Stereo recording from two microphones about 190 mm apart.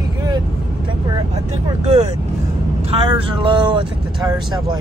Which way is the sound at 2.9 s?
30° right (ahead or behind).